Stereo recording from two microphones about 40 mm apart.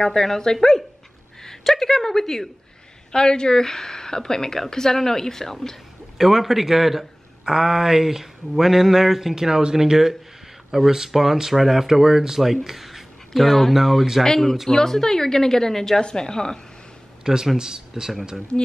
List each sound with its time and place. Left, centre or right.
0.0 s speech: centre
3.1 s speech: centre
6.1 s speech: centre
14.2 s speech: centre
17.2 s speech: centre